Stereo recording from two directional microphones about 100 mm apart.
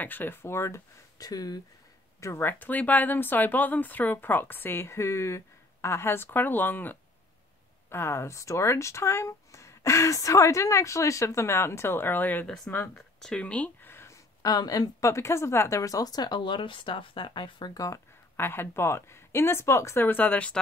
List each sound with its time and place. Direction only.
0.0 s a woman's voice: 20° left (ahead or behind); by 1.6 s 40° left (ahead or behind)
2.1 s a woman's voice: 25° left (ahead or behind)
12.9 s a sound: 5° left (ahead or behind); by 14.1 s 25° left (ahead or behind)
14.4 s a woman's voice: 40° left (ahead or behind); by 20.5 s 15° left (ahead or behind)